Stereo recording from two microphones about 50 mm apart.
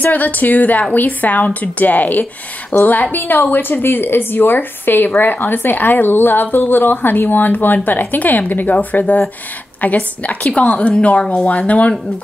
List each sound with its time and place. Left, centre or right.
0.0 s a woman's voice: left